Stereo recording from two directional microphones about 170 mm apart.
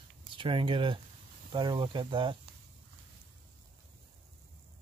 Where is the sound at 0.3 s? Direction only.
30° right (ahead or behind).